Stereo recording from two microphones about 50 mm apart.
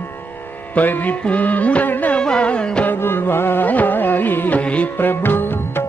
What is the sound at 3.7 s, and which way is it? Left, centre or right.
Music, left.